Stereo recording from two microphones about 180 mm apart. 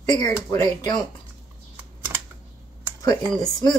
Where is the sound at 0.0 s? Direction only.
20° left (ahead or behind).